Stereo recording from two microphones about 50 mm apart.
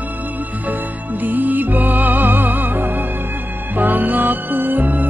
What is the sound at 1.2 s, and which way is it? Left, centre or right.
Music, right.